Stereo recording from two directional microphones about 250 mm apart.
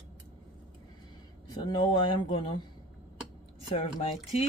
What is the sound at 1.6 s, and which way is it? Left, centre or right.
Speech, centre.